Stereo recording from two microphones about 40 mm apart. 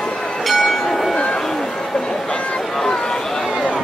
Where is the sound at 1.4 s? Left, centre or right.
Centre.